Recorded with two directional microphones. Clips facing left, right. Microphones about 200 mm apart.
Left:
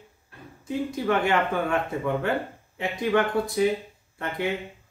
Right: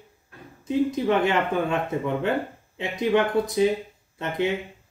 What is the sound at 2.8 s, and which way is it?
Speech, 20° right (ahead or behind).